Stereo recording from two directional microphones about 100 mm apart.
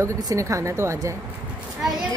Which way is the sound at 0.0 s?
35° right (ahead or behind).